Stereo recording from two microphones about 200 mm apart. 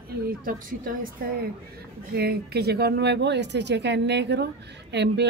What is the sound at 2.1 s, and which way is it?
Speech, 50° right (ahead or behind).